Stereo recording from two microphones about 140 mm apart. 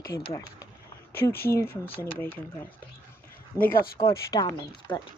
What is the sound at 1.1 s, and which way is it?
Speech, 90° left.